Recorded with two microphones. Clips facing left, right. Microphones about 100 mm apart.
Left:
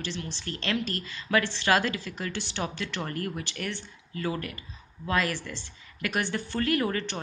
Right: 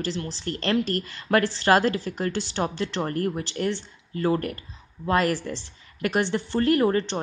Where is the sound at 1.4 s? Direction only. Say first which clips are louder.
Right 5 dB; 40° right (ahead or behind).